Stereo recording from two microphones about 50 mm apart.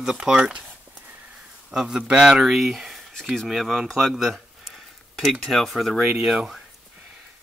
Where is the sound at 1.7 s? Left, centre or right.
Centre.